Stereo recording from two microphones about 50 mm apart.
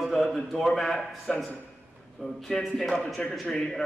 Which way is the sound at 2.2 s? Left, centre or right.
Left.